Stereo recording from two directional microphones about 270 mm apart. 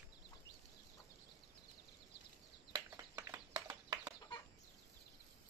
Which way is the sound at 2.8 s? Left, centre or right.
Centre.